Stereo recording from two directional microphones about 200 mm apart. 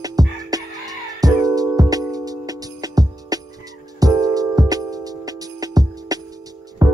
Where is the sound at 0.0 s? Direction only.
20° right (ahead or behind).